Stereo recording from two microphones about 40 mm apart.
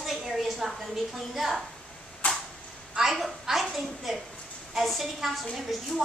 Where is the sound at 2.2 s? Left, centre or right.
Left.